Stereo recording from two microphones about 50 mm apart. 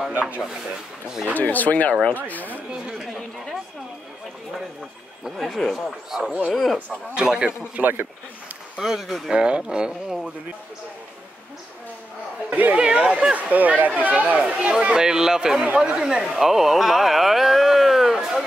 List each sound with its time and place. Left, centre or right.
0.1 s a sound: right
0.4 s speech: centre
1.3 s speech: left
5.4 s speech: centre
7.2 s speech: centre
7.8 s speech: right
8.7 s speech: centre
9.3 s speech: centre
12.4 s speech: right
12.7 s speech: right